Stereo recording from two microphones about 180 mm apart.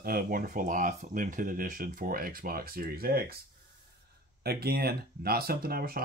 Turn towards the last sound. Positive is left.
turn(degrees=-55)  # may be behind; listen again after turning